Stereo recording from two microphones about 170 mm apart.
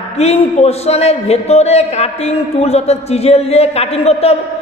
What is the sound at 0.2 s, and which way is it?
A man's voice, 40° left (ahead or behind).